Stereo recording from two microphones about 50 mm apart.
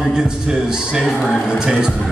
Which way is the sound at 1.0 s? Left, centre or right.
Centre.